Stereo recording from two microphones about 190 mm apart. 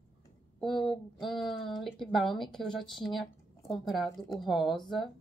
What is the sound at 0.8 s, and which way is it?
Speech, centre (ahead or behind).